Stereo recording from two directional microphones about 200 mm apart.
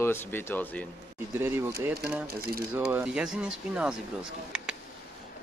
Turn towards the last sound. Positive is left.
turn(degrees=-5)  # may be behind; listen again after turning